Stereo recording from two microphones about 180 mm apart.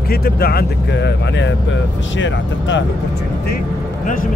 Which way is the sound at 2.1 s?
90° left.